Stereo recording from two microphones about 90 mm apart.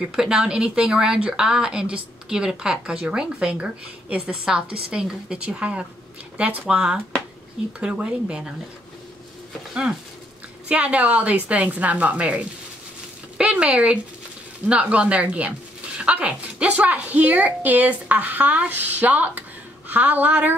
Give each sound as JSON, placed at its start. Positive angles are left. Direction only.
{"t": 0.0, "sound": "a woman's voice", "side_deg": -10}
{"t": 10.7, "sound": "a woman's voice", "side_deg": -15}